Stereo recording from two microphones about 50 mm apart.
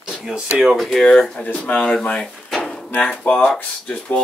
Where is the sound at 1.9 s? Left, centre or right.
Centre.